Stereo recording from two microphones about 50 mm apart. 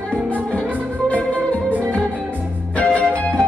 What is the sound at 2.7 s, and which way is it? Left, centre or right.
Music, left.